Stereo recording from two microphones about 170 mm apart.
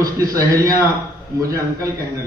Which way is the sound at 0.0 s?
20° right (ahead or behind).